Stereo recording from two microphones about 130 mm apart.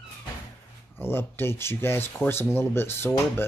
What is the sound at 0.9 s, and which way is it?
Speech, 15° left (ahead or behind).